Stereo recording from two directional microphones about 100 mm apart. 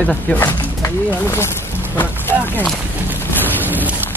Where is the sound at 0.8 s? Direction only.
25° left (ahead or behind).